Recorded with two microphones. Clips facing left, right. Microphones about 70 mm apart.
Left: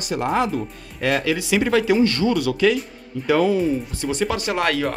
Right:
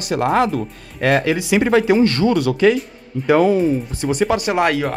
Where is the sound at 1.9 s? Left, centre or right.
Right.